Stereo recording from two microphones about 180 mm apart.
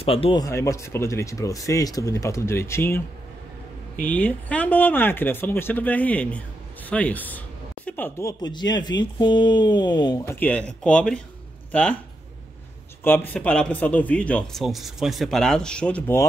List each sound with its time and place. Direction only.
0.0 s speech: 30° left (ahead or behind)
0.4 s speech: 15° left (ahead or behind)
4.1 s speech: 10° left (ahead or behind)
13.0 s speech: 10° left (ahead or behind)